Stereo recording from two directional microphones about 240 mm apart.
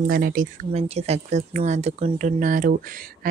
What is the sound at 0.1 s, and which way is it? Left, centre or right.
Speech, right.